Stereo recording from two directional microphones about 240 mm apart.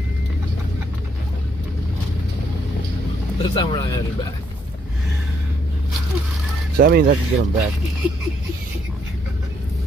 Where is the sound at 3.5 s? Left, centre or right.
Centre.